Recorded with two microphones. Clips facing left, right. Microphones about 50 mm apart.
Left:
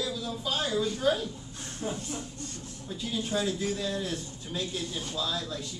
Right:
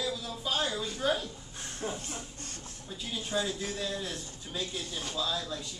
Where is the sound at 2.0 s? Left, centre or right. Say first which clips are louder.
Left 4 dB; right.